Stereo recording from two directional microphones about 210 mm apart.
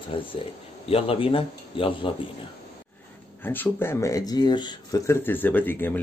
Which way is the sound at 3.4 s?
10° left (ahead or behind).